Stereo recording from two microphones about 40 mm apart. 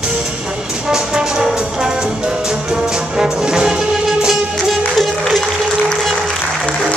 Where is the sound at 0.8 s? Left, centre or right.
Centre.